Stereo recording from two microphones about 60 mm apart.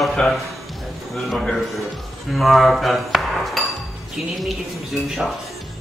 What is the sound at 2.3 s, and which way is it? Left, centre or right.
A man's voice, centre.